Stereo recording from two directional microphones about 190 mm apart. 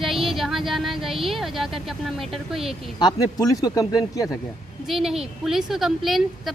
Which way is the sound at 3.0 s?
20° left (ahead or behind).